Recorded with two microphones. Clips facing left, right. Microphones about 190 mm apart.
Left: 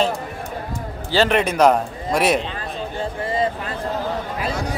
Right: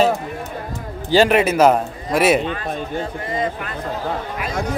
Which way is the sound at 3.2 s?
30° left (ahead or behind).